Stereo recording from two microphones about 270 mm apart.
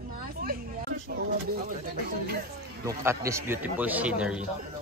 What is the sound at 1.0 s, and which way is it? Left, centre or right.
Speech, right.